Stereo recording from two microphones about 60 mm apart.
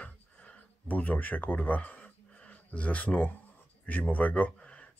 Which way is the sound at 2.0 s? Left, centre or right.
Left.